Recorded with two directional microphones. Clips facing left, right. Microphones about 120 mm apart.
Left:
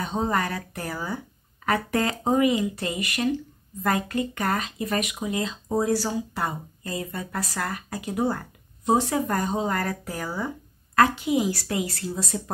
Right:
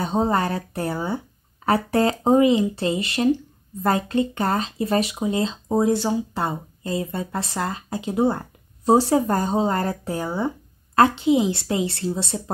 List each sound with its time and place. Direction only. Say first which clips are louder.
0.0 s speech: right 4 dB; 35° right (ahead or behind)